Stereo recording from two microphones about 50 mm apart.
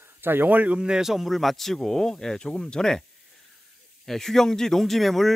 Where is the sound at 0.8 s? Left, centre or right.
Centre.